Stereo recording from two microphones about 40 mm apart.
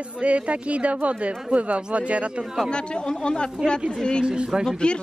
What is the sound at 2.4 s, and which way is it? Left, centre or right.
Speech, centre.